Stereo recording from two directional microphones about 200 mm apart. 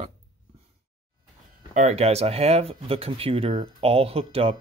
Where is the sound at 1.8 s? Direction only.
35° right (ahead or behind).